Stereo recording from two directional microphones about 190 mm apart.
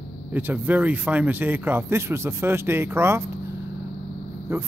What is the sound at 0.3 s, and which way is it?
Speech, 10° right (ahead or behind).